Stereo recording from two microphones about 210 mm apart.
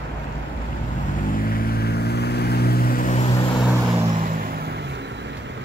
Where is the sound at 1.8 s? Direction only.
50° left (ahead or behind).